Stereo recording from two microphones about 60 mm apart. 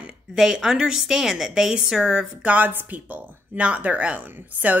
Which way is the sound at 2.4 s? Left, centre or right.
Right.